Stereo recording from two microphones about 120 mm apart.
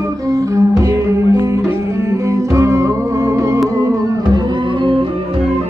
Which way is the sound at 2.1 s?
25° right (ahead or behind).